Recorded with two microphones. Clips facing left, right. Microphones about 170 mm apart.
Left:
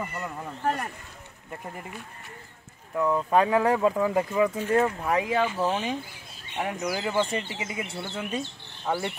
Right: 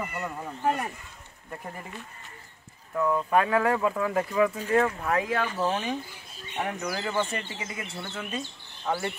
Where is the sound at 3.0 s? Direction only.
20° left (ahead or behind).